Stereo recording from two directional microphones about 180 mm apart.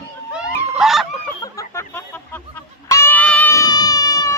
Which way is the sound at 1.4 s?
15° left (ahead or behind).